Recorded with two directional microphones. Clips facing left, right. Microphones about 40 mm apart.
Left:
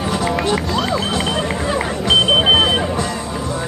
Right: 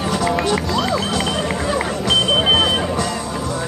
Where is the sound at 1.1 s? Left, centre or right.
Left.